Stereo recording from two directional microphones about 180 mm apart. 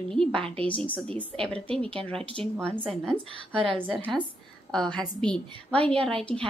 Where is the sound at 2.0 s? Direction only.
5° left (ahead or behind).